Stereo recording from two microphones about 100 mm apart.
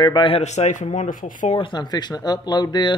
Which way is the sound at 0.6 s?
65° left (ahead or behind).